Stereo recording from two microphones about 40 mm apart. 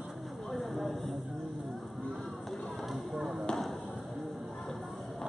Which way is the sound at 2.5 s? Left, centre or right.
Centre.